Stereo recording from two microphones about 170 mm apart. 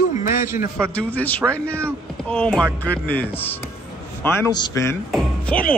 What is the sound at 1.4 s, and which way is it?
Speech, 15° right (ahead or behind).